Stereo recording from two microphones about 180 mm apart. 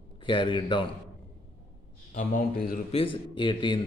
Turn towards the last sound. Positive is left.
turn(degrees=25)  # may be behind; listen again after turning